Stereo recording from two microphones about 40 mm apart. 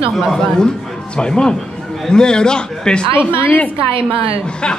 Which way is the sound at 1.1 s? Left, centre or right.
Left.